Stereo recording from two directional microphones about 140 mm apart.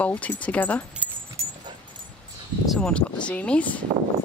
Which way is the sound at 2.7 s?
5° left (ahead or behind).